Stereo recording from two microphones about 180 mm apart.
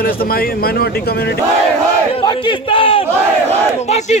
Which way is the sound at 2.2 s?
30° left (ahead or behind).